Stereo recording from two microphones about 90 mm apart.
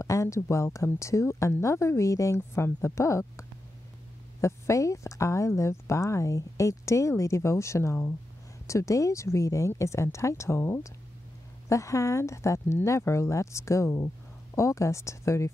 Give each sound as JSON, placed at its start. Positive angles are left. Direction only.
{"t": 0.0, "sound": "speech", "side_deg": 35}